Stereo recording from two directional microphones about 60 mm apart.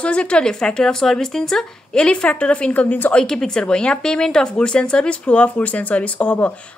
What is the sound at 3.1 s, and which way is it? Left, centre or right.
Speech, centre.